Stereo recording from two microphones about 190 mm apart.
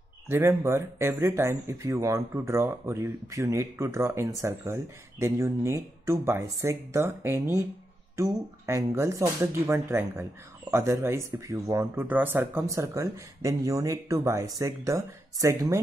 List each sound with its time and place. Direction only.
0.3 s speech: 15° right (ahead or behind)